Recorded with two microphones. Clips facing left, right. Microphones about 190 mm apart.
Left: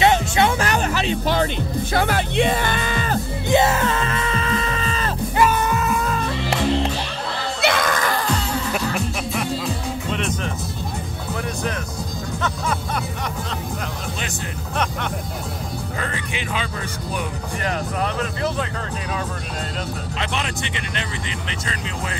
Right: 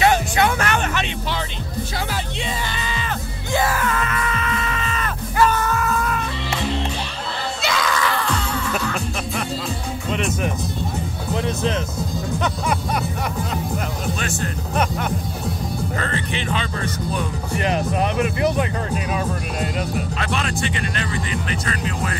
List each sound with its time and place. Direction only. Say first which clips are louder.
0.0 s music: even; 25° left (ahead or behind); by 1.5 s 40° left (ahead or behind)
2.0 s music: left 11 dB; 60° left (ahead or behind)
3.5 s music: left 3 dB; 25° left (ahead or behind)
5.4 s music: even; 15° left (ahead or behind)
7.6 s screaming: left 2 dB; 50° left (ahead or behind)
10.1 s music: right 5 dB; 5° right (ahead or behind)
16.0 s music: right 3 dB; 10° left (ahead or behind)
17.6 s vehicle: right 3 dB; 20° right (ahead or behind)
20.2 s music: right 2 dB; 20° left (ahead or behind)